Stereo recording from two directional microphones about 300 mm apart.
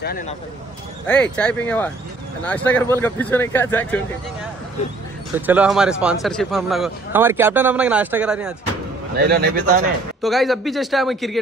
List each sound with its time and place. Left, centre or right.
1.0 s speech: centre
5.3 s speech: centre
9.1 s a man's voice: right
10.2 s speech: centre